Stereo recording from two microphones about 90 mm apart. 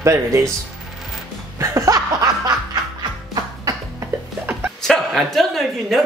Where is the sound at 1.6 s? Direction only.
40° right (ahead or behind).